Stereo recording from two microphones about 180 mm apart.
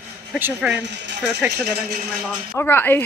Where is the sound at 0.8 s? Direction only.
75° right (ahead or behind).